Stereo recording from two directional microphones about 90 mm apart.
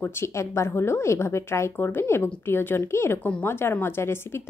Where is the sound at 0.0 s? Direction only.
30° left (ahead or behind).